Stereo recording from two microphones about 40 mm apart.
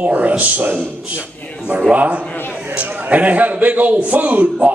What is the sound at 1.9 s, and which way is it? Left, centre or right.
A man's voice, right.